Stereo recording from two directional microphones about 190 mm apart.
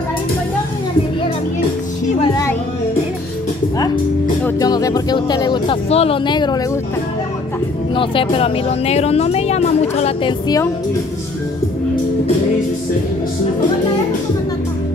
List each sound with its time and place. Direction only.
4.5 s speech: 20° left (ahead or behind)
7.9 s speech: 25° left (ahead or behind)